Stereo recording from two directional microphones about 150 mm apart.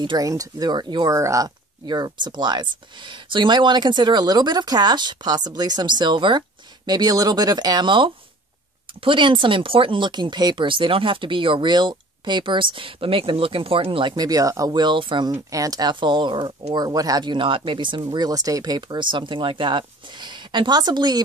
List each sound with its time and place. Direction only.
0.0 s speech: 25° right (ahead or behind)